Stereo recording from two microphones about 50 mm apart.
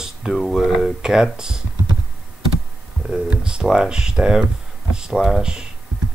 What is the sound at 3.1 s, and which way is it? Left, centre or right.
Speech, centre.